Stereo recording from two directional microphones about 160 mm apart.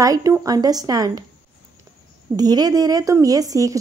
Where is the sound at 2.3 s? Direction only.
25° right (ahead or behind).